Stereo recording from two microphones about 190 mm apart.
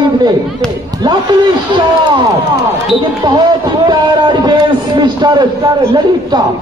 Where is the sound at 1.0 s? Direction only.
20° right (ahead or behind).